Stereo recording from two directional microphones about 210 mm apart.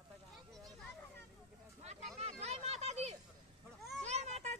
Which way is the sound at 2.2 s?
30° right (ahead or behind).